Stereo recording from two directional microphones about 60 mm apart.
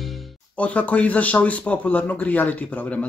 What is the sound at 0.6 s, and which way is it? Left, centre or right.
Speech, left.